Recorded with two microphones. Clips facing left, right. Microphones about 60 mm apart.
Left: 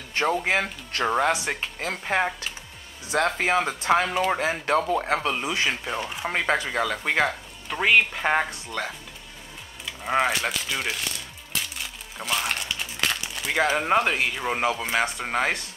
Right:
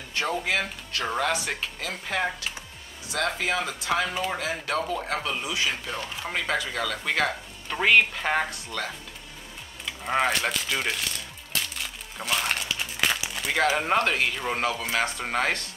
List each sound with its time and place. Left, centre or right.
0.3 s speech: left
3.3 s speech: left
5.9 s speech: left
6.3 s speech: left; by 7.3 s centre
7.7 s speech: centre
9.8 s music: centre
13.7 s speech: centre